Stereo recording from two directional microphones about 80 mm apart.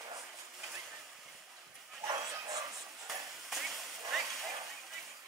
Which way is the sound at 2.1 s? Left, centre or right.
Right.